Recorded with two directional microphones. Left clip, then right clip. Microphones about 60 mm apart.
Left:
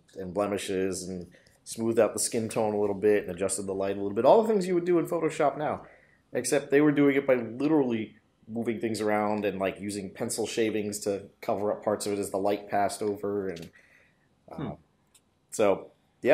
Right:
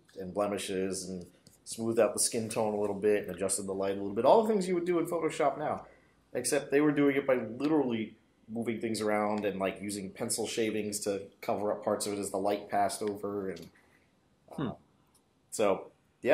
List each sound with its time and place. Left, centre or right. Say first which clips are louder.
0.1 s speech: left 3 dB; left
2.6 s speech: left 4 dB; centre
2.9 s speech: left 4 dB; left
15.5 s a sound: left 4 dB; left